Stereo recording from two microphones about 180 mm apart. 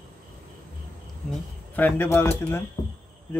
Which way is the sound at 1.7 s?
10° left (ahead or behind).